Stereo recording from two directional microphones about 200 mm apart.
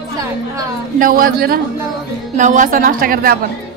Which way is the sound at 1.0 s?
45° right (ahead or behind).